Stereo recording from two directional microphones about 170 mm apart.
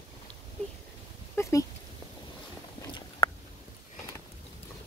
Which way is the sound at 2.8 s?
30° left (ahead or behind).